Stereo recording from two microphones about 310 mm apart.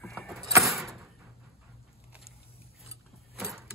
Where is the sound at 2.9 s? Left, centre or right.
Centre.